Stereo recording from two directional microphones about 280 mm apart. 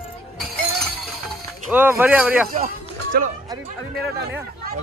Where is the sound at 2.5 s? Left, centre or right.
Right.